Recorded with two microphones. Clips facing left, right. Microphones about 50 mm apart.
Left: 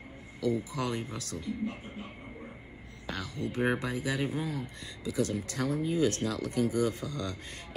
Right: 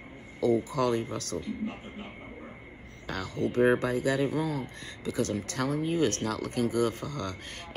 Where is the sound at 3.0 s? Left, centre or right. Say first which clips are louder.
Right 5 dB; right.